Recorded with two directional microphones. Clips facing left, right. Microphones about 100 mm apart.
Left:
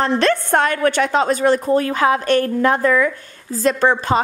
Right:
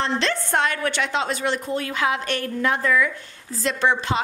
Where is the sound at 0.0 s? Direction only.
50° left (ahead or behind).